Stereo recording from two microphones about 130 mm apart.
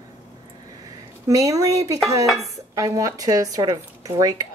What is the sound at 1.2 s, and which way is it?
Speech, 25° right (ahead or behind).